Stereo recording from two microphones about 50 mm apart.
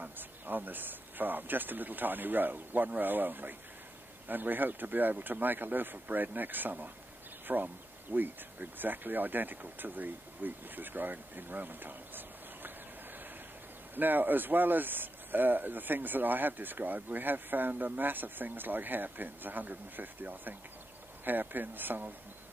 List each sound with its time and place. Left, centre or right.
0.0 s speech: right
13.9 s speech: right